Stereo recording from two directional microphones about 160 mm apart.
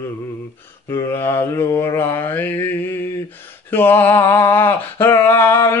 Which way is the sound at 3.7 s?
15° left (ahead or behind).